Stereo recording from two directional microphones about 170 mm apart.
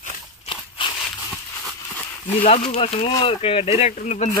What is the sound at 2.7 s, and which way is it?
Speech, 35° left (ahead or behind).